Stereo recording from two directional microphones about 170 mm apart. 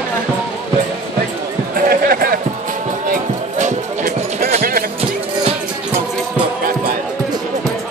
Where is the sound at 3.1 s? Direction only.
45° right (ahead or behind).